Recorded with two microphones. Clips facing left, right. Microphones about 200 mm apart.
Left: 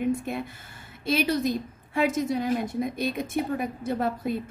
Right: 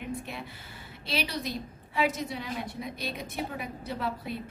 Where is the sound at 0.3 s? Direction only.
50° left (ahead or behind).